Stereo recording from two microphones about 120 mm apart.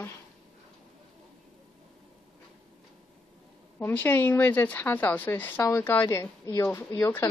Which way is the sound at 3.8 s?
15° left (ahead or behind).